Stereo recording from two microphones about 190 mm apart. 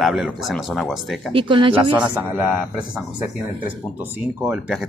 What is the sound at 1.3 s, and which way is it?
Speech, 25° right (ahead or behind).